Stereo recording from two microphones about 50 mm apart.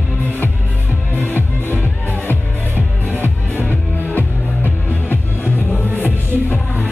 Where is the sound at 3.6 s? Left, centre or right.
Left.